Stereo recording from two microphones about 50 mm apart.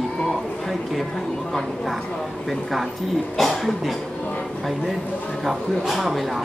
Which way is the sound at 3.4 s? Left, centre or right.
Centre.